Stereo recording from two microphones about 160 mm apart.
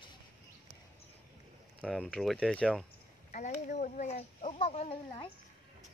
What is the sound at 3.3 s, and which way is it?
Speech, 50° left (ahead or behind).